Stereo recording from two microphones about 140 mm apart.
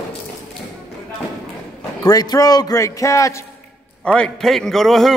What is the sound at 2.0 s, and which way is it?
A man's voice, 30° left (ahead or behind).